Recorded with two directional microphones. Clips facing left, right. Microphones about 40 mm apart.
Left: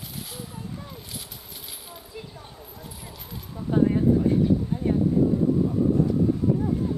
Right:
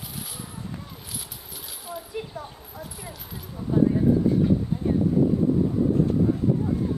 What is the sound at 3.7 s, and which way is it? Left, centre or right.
Speech, left.